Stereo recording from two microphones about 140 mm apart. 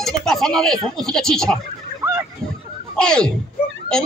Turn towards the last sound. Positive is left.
turn(degrees=5)  # may be behind; listen again after turning